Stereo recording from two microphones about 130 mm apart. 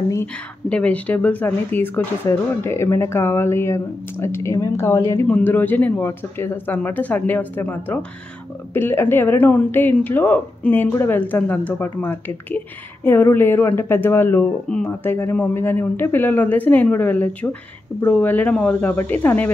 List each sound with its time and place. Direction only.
0.7 s a woman's voice: 10° left (ahead or behind)